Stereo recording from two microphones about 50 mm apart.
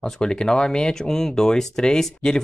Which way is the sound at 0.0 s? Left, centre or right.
Centre.